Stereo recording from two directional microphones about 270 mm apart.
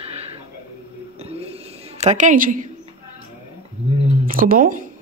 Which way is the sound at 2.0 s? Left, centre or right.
Right.